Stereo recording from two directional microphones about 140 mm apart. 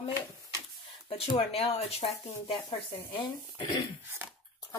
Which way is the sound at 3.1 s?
35° left (ahead or behind).